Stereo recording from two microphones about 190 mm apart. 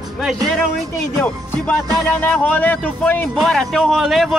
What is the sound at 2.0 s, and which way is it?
A man's voice, 10° left (ahead or behind).